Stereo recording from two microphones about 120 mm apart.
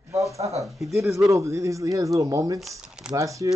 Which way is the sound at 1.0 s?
25° right (ahead or behind).